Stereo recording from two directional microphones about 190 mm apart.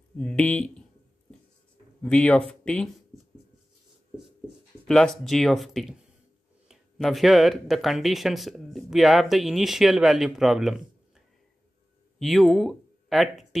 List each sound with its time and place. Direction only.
0.2 s speech: 5° left (ahead or behind)
2.0 s speech: 5° left (ahead or behind)
3.1 s a sound: 15° right (ahead or behind)
4.8 s speech: 5° left (ahead or behind)